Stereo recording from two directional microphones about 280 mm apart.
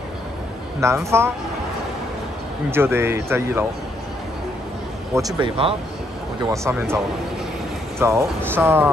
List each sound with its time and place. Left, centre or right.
0.7 s speech: centre
2.7 s speech: centre
5.1 s speech: centre
8.0 s speech: centre